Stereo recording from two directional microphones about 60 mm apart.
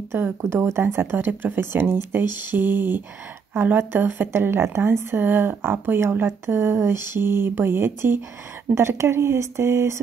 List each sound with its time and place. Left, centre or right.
0.1 s speech: right
0.5 s speech: right
1.1 s speech: right